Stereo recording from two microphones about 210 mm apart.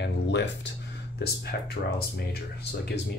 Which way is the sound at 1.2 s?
50° left (ahead or behind).